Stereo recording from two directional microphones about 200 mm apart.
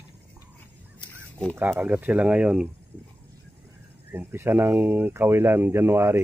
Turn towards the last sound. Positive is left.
turn(degrees=-10)  # may be behind; listen again after turning